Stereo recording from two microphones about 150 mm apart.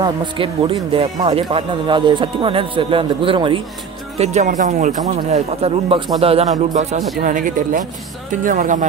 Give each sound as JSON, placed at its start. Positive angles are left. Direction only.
{"t": 0.0, "sound": "speech", "side_deg": -35}
{"t": 4.2, "sound": "speech", "side_deg": -50}
{"t": 6.2, "sound": "speech", "side_deg": -40}
{"t": 7.2, "sound": "speech", "side_deg": -60}